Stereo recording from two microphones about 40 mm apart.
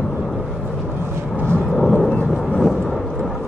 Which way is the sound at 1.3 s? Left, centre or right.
Left.